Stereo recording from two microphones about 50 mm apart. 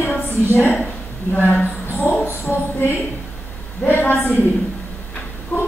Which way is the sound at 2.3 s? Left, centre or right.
Left.